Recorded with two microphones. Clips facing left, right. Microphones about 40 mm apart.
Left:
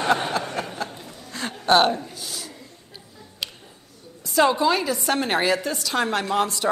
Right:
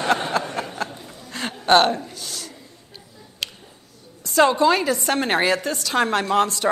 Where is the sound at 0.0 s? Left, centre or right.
Centre.